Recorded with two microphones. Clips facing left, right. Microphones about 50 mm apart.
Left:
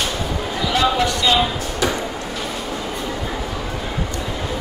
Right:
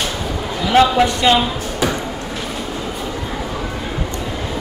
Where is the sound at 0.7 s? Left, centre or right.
Right.